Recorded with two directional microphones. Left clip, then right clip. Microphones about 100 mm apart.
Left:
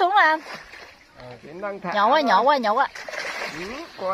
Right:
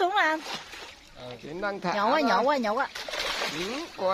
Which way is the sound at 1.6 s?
90° right.